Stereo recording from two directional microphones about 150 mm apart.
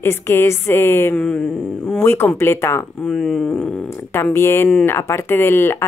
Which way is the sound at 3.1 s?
5° left (ahead or behind).